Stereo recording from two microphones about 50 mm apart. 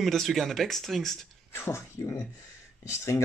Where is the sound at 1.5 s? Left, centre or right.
Left.